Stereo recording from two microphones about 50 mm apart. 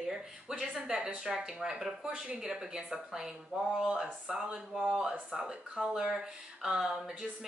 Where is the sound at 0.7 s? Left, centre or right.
Centre.